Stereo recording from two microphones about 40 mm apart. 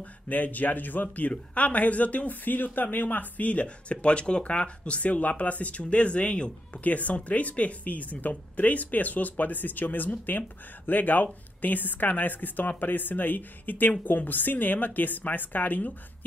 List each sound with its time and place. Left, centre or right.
0.0 s speech: left
6.8 s speech: left